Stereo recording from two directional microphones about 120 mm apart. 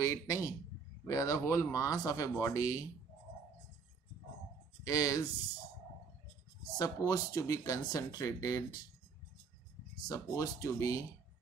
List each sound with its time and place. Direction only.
0.0 s speech: 25° left (ahead or behind)
4.8 s speech: 30° left (ahead or behind)
6.8 s speech: 30° left (ahead or behind)
10.0 s speech: 30° left (ahead or behind)